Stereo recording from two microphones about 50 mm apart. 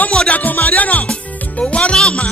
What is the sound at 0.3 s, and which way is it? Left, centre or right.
Music, left.